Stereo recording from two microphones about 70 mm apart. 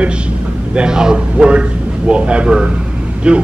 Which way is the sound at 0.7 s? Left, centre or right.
Centre.